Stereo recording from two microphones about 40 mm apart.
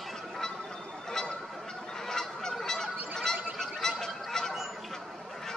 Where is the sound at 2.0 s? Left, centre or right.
Centre.